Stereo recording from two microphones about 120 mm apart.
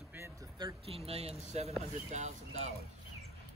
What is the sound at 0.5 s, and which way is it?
Speech, 40° right (ahead or behind).